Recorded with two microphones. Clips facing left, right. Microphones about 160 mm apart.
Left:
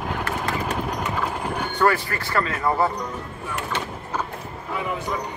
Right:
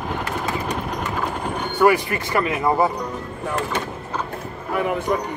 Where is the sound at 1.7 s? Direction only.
15° right (ahead or behind).